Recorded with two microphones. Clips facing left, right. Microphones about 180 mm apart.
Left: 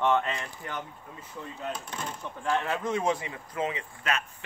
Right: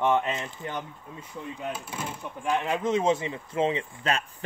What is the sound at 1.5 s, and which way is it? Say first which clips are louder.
Speech: right 1 dB; 10° right (ahead or behind).